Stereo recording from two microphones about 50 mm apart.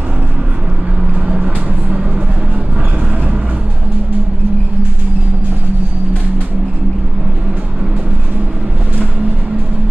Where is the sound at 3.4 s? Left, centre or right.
Right.